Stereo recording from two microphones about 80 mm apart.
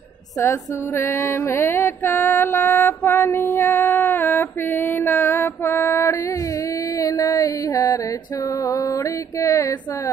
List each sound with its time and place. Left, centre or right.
0.4 s mantra: left
7.0 s a sound: left
8.6 s mantra: left